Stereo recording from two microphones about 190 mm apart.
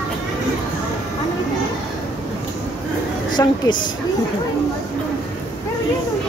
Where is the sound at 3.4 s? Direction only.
20° left (ahead or behind).